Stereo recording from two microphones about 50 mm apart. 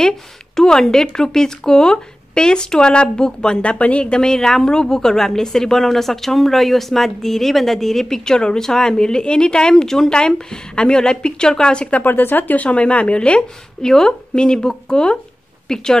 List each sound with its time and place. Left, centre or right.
0.6 s speech: centre
12.0 s speech: left
13.8 s speech: centre